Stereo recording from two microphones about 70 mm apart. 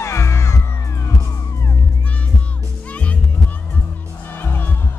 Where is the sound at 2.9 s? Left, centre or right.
Centre.